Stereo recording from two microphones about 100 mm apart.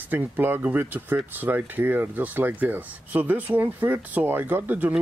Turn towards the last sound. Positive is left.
turn(degrees=-20)  # may be behind; listen again after turning